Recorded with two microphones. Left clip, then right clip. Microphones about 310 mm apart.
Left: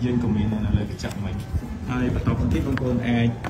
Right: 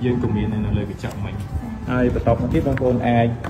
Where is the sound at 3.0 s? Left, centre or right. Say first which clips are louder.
Right 7 dB; centre.